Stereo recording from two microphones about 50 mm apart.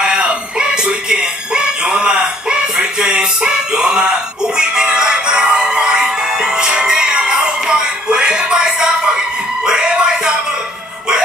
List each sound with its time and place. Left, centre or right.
0.0 s music: right
8.1 s a sound: centre
9.7 s music: centre